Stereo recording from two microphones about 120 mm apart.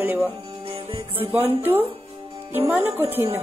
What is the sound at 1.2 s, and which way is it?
A woman's voice, 20° right (ahead or behind).